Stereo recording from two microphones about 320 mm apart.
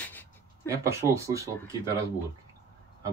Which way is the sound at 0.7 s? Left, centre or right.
Centre.